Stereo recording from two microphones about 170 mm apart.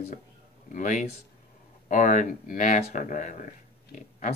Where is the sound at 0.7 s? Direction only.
50° left (ahead or behind).